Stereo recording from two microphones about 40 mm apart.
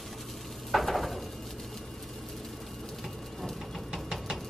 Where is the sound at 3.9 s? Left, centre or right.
Centre.